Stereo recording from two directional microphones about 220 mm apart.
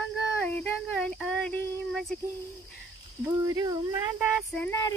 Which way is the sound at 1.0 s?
5° left (ahead or behind).